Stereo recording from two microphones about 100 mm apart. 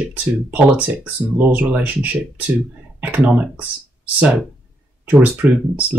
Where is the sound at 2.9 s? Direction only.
15° right (ahead or behind).